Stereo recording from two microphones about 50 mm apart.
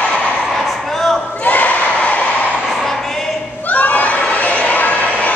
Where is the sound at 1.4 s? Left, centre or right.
Left.